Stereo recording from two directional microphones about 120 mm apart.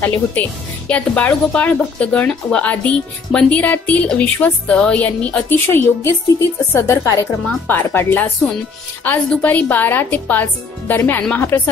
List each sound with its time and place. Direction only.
0.0 s a woman's voice: 15° left (ahead or behind)